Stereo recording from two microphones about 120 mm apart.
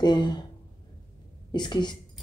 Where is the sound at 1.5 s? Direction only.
40° left (ahead or behind).